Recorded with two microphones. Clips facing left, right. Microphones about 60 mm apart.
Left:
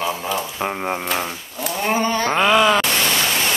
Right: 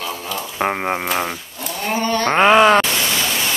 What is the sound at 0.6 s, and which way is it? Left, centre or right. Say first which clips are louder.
Speech: right 3 dB; right.